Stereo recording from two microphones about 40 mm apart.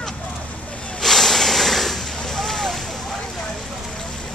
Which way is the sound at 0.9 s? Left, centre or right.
Centre.